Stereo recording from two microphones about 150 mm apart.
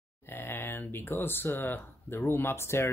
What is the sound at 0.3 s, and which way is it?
Speech, 15° left (ahead or behind).